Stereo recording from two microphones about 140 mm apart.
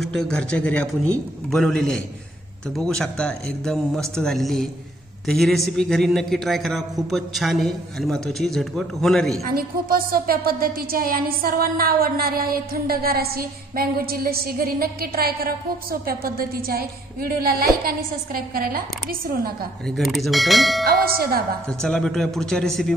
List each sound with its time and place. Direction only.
0.1 s a man's voice: 5° left (ahead or behind)
9.5 s a woman's voice: 90° right
19.9 s a man's voice: centre (ahead or behind)
20.8 s a woman's voice: 90° right
21.6 s a man's voice: 5° left (ahead or behind)